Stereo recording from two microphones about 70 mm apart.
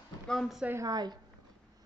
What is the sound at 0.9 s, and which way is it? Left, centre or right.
Speech, right.